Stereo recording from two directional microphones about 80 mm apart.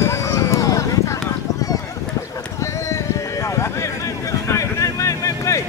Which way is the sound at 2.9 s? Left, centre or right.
Left.